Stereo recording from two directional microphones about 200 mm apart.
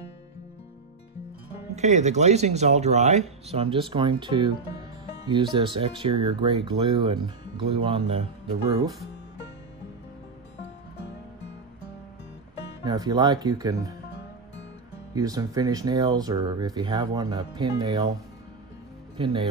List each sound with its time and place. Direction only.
1.8 s speech: 35° right (ahead or behind)
12.8 s speech: 20° right (ahead or behind)
15.1 s speech: 20° right (ahead or behind)
19.1 s speech: 25° right (ahead or behind)